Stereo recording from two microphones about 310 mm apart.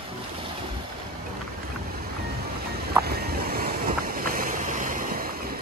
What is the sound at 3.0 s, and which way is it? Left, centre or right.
Boat, right.